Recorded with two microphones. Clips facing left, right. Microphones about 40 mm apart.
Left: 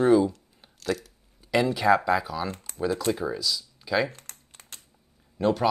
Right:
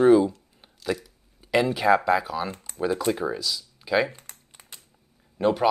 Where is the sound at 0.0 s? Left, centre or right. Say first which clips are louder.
Right 3 dB; centre.